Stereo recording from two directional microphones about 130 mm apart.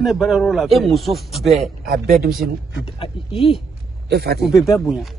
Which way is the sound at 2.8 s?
45° left (ahead or behind).